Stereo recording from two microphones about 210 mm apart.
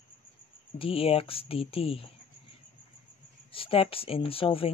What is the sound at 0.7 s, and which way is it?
Speech, 25° left (ahead or behind).